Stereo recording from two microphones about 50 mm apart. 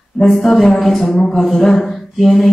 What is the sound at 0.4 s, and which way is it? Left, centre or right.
A woman's voice, centre.